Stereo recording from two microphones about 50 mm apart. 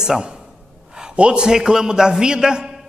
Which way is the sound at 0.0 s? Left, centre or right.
Centre.